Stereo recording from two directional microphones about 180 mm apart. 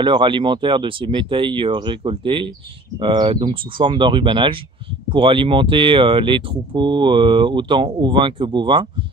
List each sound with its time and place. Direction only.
0.0 s speech: 25° right (ahead or behind)